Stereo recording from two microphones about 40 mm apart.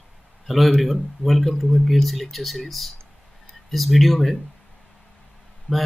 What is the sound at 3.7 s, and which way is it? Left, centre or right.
Speech, centre.